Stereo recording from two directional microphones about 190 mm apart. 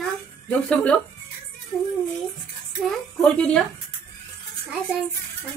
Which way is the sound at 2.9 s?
5° left (ahead or behind).